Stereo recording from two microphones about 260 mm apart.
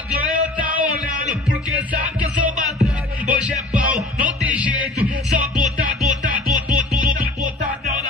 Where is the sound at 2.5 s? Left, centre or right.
Right.